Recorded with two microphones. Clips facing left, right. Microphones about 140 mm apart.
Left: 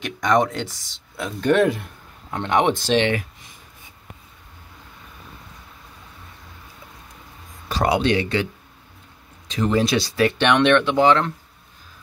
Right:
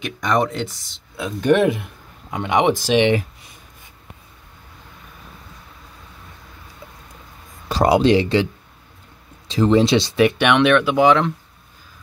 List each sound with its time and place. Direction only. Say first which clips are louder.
0.0 s speech: left 1 dB; 5° right (ahead or behind)
7.8 s speech: right 5 dB; 35° right (ahead or behind)
9.5 s speech: right 5 dB; 30° right (ahead or behind); by 11.3 s 10° right (ahead or behind)